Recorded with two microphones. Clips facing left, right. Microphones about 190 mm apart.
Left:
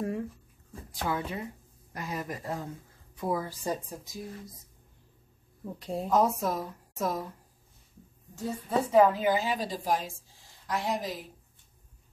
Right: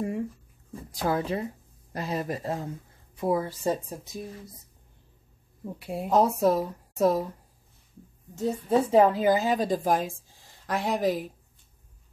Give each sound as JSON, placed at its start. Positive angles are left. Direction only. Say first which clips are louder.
{"t": 1.0, "sound": "a woman's voice", "louder": "right 6 dB", "side_deg": -35}
{"t": 5.6, "sound": "speech", "louder": "right 1 dB", "side_deg": -10}
{"t": 6.1, "sound": "a woman's voice", "louder": "right 5 dB", "side_deg": -30}
{"t": 8.4, "sound": "a woman's voice", "louder": "right 6 dB", "side_deg": -25}
{"t": 9.3, "sound": "a woman's voice", "louder": "right 5 dB", "side_deg": -45}